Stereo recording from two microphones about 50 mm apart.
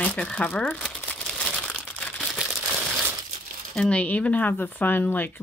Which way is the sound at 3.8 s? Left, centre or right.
Left.